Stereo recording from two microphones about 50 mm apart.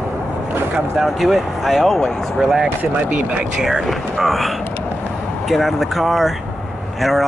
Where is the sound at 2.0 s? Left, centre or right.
Centre.